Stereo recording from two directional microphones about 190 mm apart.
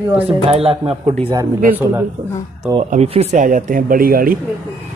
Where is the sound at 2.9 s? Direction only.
35° right (ahead or behind); by 4.4 s 50° right (ahead or behind).